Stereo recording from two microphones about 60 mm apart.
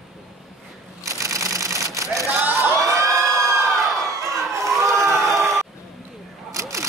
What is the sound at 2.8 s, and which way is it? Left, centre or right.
Crowd, right.